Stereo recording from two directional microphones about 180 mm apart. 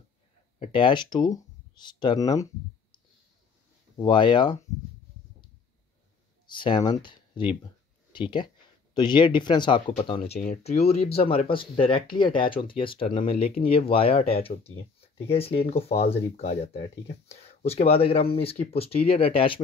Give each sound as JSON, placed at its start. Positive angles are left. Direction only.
{"t": 0.6, "sound": "speech", "side_deg": 30}
{"t": 4.0, "sound": "speech", "side_deg": 25}
{"t": 6.5, "sound": "speech", "side_deg": 25}